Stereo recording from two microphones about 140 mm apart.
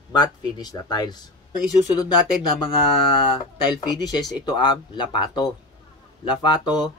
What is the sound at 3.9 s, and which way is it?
Speech, 30° left (ahead or behind).